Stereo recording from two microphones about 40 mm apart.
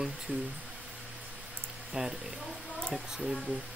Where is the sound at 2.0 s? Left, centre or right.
Centre.